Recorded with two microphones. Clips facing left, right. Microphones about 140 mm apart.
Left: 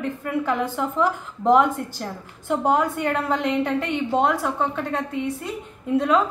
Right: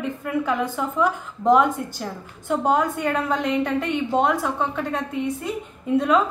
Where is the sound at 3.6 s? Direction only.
10° right (ahead or behind).